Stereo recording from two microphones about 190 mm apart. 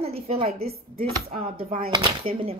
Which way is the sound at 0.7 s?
50° right (ahead or behind).